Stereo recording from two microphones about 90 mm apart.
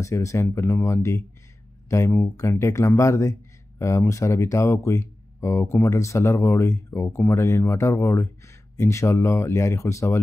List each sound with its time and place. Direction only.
0.0 s speech: 35° left (ahead or behind)